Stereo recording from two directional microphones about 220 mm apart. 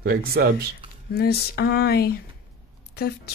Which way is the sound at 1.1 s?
45° left (ahead or behind).